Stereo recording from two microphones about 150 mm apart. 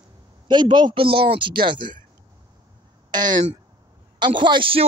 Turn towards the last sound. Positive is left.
turn(degrees=-35)  # may be behind; listen again after turning